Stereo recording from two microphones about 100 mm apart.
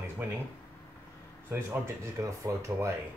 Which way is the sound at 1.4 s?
20° right (ahead or behind).